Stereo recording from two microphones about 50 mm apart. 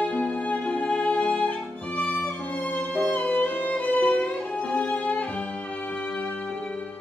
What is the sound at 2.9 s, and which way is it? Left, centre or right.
Music, centre.